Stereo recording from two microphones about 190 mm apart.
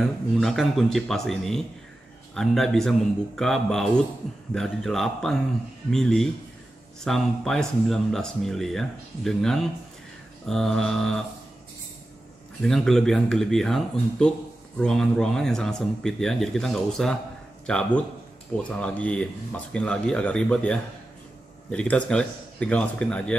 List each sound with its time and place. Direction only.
0.0 s speech: centre (ahead or behind)
12.6 s speech: centre (ahead or behind)